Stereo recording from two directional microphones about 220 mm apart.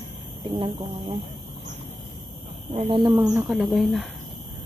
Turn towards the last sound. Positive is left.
turn(degrees=0)  # may be behind; listen again after turning